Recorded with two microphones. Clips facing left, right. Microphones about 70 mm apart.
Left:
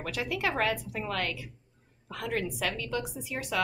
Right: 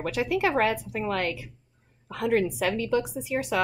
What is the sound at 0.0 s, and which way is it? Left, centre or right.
A woman's voice, right.